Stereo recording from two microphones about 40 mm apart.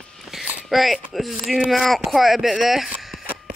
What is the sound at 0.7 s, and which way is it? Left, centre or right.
Speech, centre.